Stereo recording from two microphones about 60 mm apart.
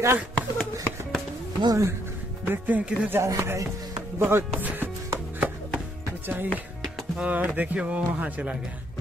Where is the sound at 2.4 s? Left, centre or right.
Right.